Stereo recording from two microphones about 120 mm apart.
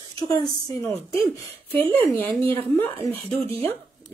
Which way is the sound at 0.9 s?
55° right (ahead or behind).